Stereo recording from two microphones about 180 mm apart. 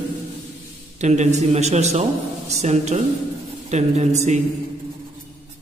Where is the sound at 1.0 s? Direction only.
40° right (ahead or behind).